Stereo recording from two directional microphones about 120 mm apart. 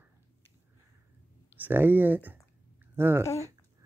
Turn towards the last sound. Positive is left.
turn(degrees=-20)  # may be behind; listen again after turning